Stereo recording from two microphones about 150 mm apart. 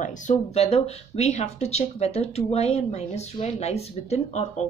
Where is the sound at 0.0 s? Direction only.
55° left (ahead or behind).